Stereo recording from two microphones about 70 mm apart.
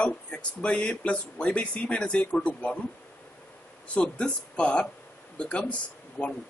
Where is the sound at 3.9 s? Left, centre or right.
Centre.